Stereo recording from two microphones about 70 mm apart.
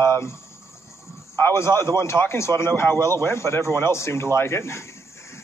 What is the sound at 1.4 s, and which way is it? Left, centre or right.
Speech, left.